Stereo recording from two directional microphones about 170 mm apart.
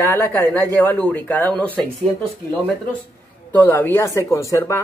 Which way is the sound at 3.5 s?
10° left (ahead or behind).